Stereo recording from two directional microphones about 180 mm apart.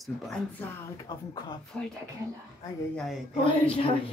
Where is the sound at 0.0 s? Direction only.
5° left (ahead or behind).